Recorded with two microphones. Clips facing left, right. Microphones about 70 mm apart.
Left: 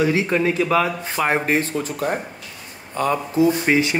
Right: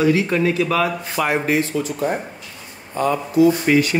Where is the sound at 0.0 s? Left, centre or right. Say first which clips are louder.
Right 2 dB; left.